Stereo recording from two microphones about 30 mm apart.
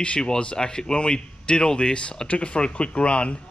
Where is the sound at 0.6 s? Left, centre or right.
Left.